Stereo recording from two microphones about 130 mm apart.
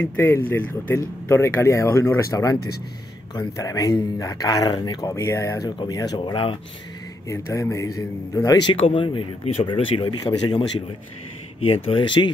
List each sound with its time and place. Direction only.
0.0 s speech: 15° left (ahead or behind); by 5.1 s 35° left (ahead or behind)
5.1 s speech: 20° left (ahead or behind)
5.8 s speech: 35° left (ahead or behind)
7.2 s speech: 25° left (ahead or behind)
8.6 s speech: 45° left (ahead or behind)
11.6 s speech: 45° left (ahead or behind)